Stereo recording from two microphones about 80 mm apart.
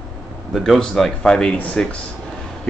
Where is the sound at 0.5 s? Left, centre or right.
Centre.